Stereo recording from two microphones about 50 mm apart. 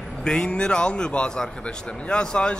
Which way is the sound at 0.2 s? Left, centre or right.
Centre.